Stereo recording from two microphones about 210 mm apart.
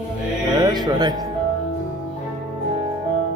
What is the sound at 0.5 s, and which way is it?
Music, 20° right (ahead or behind).